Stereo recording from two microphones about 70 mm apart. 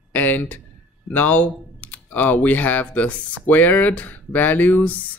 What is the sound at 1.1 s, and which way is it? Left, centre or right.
Speech, left.